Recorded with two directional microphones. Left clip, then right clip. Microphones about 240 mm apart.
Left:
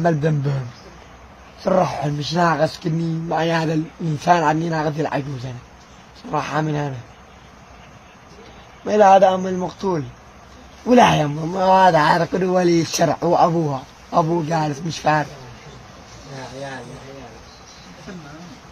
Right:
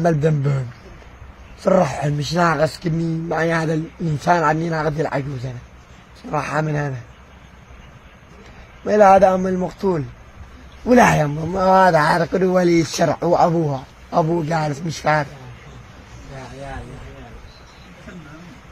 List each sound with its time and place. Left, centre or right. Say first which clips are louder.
0.0 s speech: right 1 dB; centre
8.8 s speech: right 1 dB; centre